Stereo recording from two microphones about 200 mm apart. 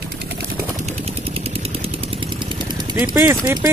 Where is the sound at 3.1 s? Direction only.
20° right (ahead or behind).